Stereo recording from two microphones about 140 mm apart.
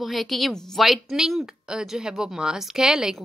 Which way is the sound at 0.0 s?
Centre (ahead or behind).